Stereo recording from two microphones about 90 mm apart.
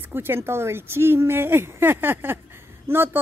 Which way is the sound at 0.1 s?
25° right (ahead or behind).